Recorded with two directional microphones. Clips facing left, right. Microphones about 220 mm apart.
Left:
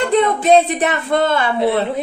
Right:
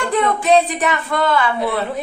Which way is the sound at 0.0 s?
20° left (ahead or behind).